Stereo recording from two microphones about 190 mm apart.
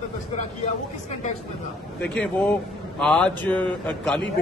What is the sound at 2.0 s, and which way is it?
A man's voice, 5° left (ahead or behind).